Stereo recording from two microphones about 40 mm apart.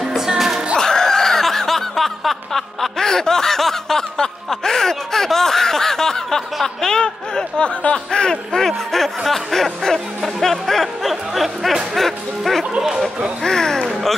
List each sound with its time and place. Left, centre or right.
0.0 s music: centre
0.7 s snicker: centre
7.0 s speech: left
10.4 s music: centre
11.9 s speech: centre